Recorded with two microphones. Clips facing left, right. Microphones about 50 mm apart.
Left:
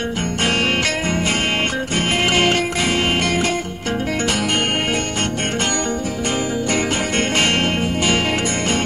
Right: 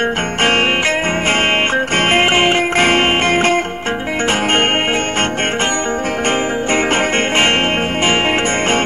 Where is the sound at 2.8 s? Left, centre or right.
Right.